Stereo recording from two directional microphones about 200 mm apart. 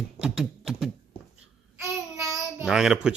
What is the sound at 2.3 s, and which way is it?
Child singing, centre (ahead or behind).